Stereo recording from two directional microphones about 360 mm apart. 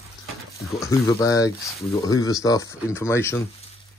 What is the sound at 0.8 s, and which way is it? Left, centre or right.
Speech, centre.